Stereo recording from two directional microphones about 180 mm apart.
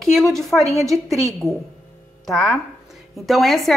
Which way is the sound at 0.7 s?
15° right (ahead or behind).